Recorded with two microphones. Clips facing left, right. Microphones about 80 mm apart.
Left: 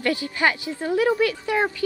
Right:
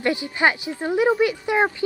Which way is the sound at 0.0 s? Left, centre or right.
Right.